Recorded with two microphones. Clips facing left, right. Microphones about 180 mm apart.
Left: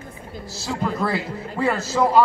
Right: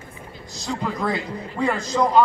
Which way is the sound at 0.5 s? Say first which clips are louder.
Left 1 dB; 5° left (ahead or behind).